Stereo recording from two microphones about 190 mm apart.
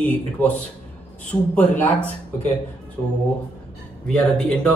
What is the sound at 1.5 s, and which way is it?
Speech, 10° left (ahead or behind).